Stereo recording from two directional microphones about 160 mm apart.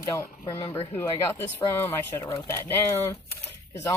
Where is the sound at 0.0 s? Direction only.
20° left (ahead or behind).